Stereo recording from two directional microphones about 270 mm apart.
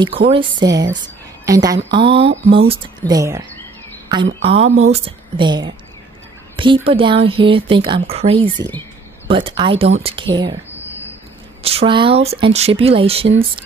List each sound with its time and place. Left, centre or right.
0.3 s speech: centre
11.6 s speech: right